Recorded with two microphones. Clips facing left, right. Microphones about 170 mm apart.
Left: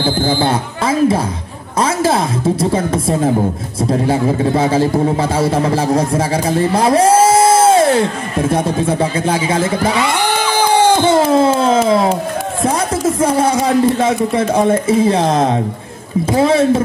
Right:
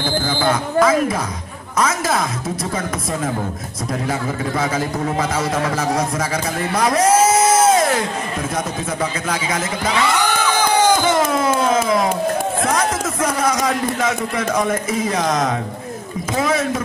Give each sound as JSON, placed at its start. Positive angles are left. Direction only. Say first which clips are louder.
{"t": 0.0, "sound": "a man's voice", "louder": "left 4 dB", "side_deg": 30}
{"t": 9.8, "sound": "a sound", "louder": "left 3 dB", "side_deg": 25}
{"t": 12.6, "sound": "a man's voice", "louder": "left 4 dB", "side_deg": 30}